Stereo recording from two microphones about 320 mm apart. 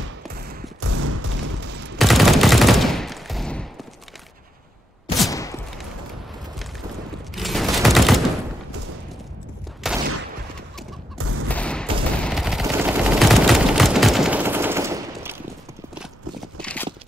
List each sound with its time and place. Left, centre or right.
0.7 s fusillade: right
2.0 s gunshot: centre
5.3 s fusillade: centre
7.3 s fusillade: centre
9.8 s fusillade: centre
11.1 s fusillade: right
11.4 s fusillade: centre
16.5 s a sound: centre